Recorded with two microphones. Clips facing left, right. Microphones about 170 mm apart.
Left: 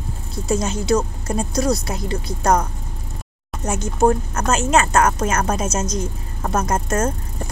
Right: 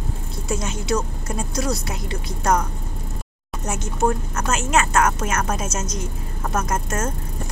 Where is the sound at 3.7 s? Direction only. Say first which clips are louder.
Left 5 dB; 35° left (ahead or behind).